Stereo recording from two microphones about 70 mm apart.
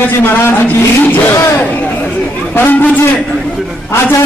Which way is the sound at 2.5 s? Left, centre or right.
Left.